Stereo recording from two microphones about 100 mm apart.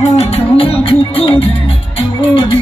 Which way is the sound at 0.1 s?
80° left.